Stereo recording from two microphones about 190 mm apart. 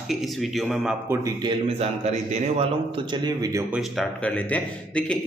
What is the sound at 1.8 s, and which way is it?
Speech, 35° right (ahead or behind).